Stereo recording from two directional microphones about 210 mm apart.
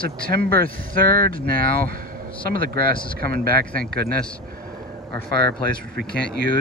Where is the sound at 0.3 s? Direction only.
45° right (ahead or behind).